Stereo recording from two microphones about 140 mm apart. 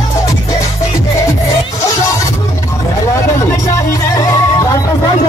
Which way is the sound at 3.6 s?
25° left (ahead or behind).